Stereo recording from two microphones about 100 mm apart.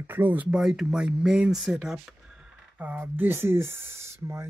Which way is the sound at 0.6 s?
5° right (ahead or behind).